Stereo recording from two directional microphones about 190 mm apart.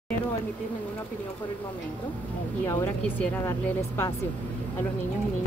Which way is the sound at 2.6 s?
10° left (ahead or behind).